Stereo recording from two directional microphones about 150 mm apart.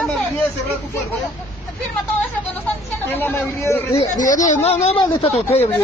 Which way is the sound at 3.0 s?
10° left (ahead or behind).